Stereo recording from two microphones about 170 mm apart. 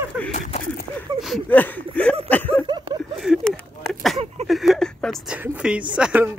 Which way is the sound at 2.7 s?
25° right (ahead or behind).